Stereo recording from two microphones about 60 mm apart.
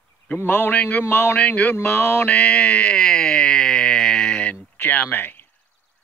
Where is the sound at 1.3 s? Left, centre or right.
Left; by 4.4 s centre.